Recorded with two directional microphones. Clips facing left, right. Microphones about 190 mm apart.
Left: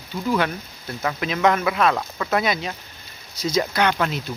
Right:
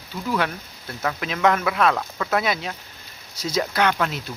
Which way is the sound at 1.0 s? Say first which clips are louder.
Left 1 dB; centre (ahead or behind).